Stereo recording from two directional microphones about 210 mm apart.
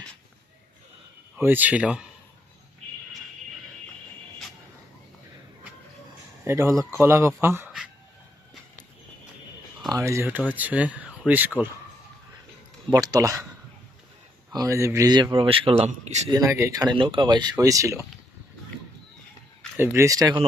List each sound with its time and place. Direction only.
1.4 s speech: 10° right (ahead or behind)
6.4 s speech: 15° right (ahead or behind)
9.8 s speech: 15° right (ahead or behind)
12.9 s speech: 15° right (ahead or behind)
14.5 s a man's voice: 15° right (ahead or behind)
16.3 s a man's voice: 15° right (ahead or behind)
19.8 s speech: 10° right (ahead or behind)